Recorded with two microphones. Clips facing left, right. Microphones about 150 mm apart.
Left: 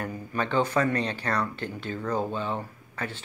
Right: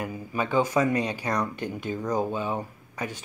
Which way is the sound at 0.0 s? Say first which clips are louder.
Right 1 dB; 10° right (ahead or behind).